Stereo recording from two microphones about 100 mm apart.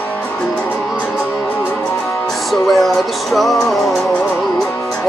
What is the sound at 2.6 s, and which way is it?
Music, centre (ahead or behind).